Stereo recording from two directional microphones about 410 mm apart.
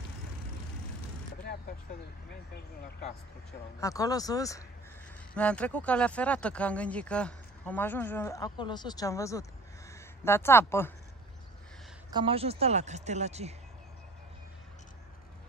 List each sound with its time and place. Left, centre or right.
3.8 s speech: centre
12.1 s speech: centre